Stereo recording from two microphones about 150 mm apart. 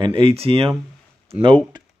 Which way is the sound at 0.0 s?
35° right (ahead or behind).